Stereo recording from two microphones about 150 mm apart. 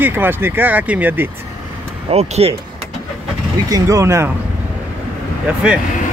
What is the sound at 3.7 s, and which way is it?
Speech, 20° right (ahead or behind).